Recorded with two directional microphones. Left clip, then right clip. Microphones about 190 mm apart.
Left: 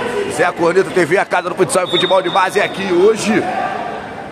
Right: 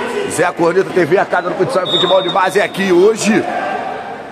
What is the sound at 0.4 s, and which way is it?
Speech, 15° right (ahead or behind).